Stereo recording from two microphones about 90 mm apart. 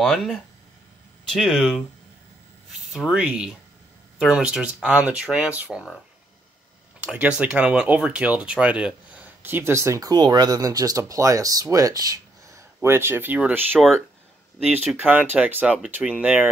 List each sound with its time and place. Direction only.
0.0 s speech: 10° left (ahead or behind)
2.9 s speech: 5° right (ahead or behind)
7.0 s speech: 10° right (ahead or behind)
15.0 s speech: 20° right (ahead or behind)